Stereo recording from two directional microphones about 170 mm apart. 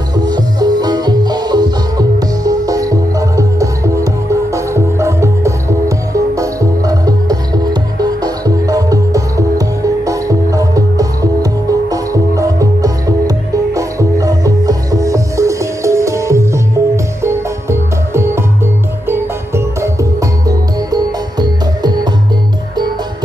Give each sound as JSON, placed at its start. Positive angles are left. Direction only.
{"t": 0.1, "sound": "music", "side_deg": -25}